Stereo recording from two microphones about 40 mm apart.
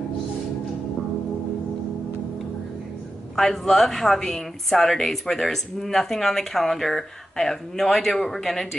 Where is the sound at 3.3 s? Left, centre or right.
Centre.